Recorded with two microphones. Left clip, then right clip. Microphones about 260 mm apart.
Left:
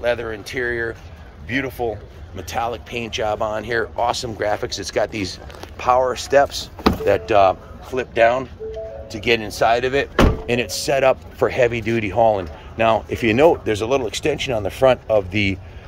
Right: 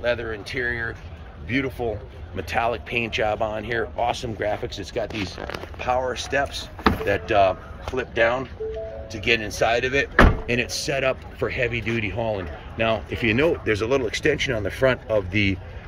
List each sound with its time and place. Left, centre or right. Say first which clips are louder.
0.0 s a man's voice: left 3 dB; centre
1.8 s speech: left 3 dB; centre
4.6 s speech: left 6 dB; left
4.9 s a man's voice: left 6 dB; centre